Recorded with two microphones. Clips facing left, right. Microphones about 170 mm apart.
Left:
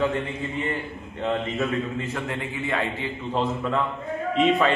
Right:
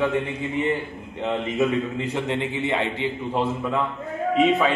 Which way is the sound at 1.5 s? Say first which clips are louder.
Right 4 dB; 15° right (ahead or behind).